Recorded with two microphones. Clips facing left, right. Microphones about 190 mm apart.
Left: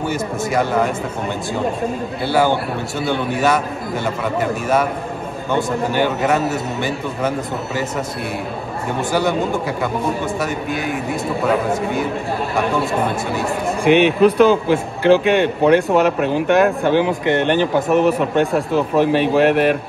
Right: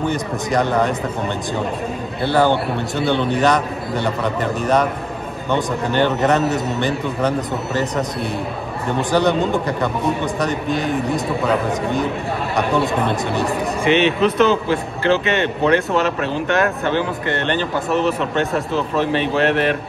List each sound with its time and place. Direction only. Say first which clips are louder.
0.1 s a man's voice: even; centre (ahead or behind)
2.2 s a man's voice: right 1 dB; 10° left (ahead or behind)
9.1 s a man's voice: right 2 dB; 5° left (ahead or behind)
13.8 s speech: left 3 dB; 55° left (ahead or behind)
14.2 s speech: left 3 dB; 10° left (ahead or behind)